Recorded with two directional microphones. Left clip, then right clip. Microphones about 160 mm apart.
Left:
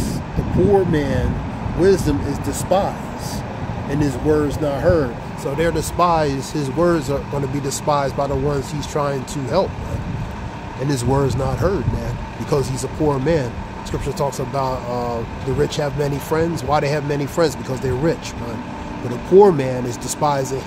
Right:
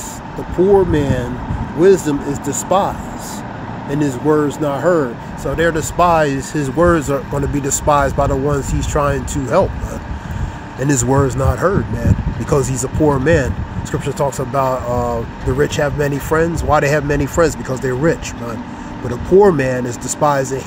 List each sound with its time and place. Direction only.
0.9 s speech: 20° right (ahead or behind)
4.0 s speech: 20° right (ahead or behind)
10.9 s speech: 25° right (ahead or behind)
14.5 s speech: 15° right (ahead or behind)
19.3 s speech: 15° right (ahead or behind)